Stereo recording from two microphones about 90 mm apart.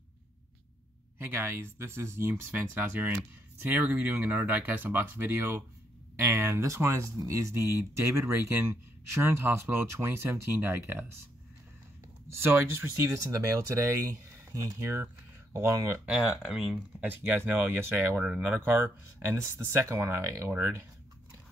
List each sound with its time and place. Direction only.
1.1 s speech: 25° right (ahead or behind)
12.3 s speech: 25° right (ahead or behind)
16.1 s speech: 5° right (ahead or behind)
17.0 s speech: 20° right (ahead or behind)
19.1 s speech: 25° right (ahead or behind)